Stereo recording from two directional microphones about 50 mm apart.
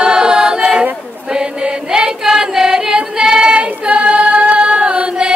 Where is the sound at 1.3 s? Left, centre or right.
Centre.